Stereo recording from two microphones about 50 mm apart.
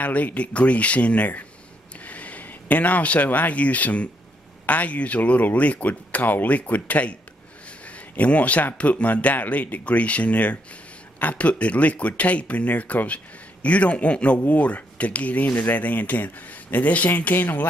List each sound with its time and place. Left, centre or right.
0.0 s speech: left